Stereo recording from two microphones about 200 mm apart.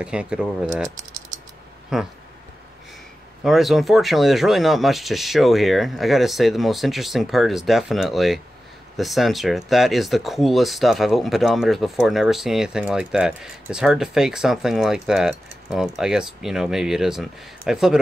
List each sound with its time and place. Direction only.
0.0 s speech: 5° right (ahead or behind)
0.8 s typing: 20° right (ahead or behind)
1.9 s speech: 5° right (ahead or behind)
3.4 s speech: centre (ahead or behind)